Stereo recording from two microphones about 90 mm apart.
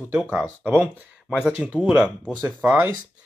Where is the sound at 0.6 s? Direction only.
15° right (ahead or behind).